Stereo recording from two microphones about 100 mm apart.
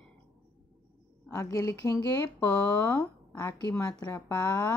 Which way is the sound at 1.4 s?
30° left (ahead or behind).